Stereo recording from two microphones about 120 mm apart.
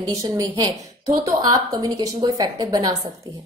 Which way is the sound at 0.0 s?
35° right (ahead or behind).